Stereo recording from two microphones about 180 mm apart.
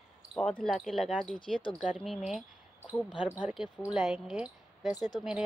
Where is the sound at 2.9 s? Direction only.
25° left (ahead or behind).